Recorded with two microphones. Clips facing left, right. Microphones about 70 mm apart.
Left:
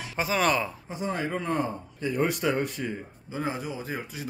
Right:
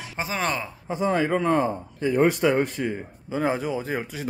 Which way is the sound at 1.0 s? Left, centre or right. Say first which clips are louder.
Right 7 dB; right.